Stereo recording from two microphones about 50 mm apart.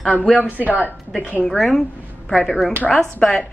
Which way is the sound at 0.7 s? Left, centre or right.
Left.